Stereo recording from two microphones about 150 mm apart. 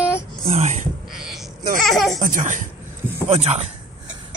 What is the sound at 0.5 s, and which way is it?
Speech, 50° right (ahead or behind).